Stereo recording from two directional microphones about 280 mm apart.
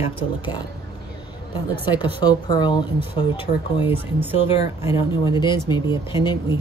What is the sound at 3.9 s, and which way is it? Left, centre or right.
Speech, centre.